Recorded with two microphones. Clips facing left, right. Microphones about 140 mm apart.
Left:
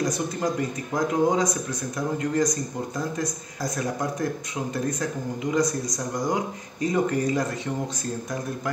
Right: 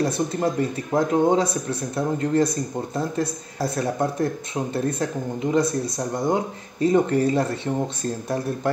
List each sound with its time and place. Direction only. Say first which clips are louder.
0.0 s speech: right 3 dB; 30° right (ahead or behind)